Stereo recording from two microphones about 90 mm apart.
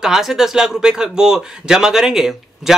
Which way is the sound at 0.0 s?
5° right (ahead or behind).